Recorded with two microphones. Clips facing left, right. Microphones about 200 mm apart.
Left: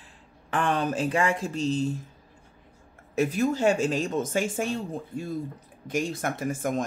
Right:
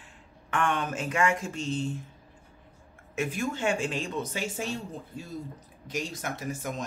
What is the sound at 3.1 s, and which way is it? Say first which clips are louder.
Speech: left 6 dB; 40° left (ahead or behind).